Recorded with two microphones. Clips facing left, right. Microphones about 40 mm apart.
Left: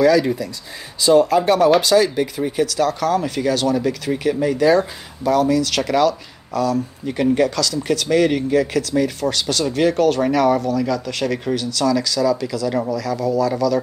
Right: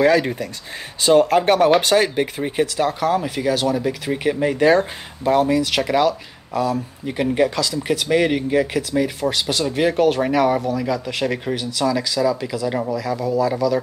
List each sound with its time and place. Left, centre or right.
0.0 s speech: right; by 13.7 s centre